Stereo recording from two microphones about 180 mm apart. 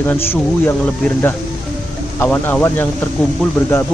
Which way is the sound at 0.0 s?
10° left (ahead or behind).